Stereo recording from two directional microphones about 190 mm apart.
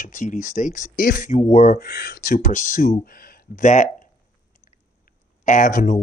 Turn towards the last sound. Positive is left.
turn(degrees=45)  # may be behind; listen again after turning